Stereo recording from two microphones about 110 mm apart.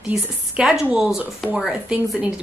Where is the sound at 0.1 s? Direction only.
10° right (ahead or behind).